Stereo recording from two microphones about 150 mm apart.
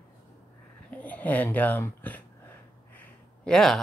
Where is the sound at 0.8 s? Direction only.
10° left (ahead or behind).